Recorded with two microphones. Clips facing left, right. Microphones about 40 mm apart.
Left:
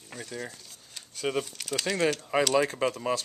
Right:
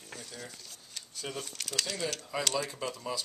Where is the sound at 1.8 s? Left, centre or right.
Left.